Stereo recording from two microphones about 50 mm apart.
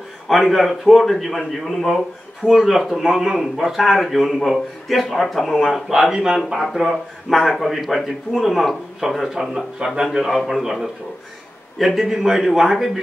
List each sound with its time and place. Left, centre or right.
0.3 s a man's voice: centre
10.1 s a man's voice: centre